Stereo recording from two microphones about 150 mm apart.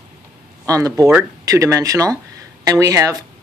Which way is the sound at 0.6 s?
25° right (ahead or behind).